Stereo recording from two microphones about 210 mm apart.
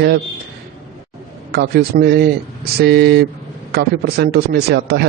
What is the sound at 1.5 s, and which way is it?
A man's voice, 50° right (ahead or behind).